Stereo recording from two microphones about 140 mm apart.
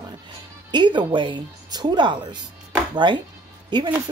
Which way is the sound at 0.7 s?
35° right (ahead or behind).